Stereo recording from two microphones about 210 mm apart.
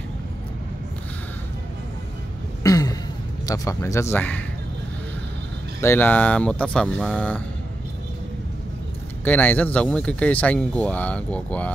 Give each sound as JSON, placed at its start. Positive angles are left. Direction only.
{"t": 2.6, "sound": "a sound", "side_deg": 15}
{"t": 3.4, "sound": "speech", "side_deg": 15}
{"t": 5.8, "sound": "speech", "side_deg": 10}
{"t": 9.2, "sound": "speech", "side_deg": 10}